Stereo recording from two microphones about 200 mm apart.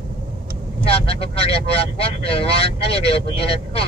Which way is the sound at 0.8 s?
30° left (ahead or behind).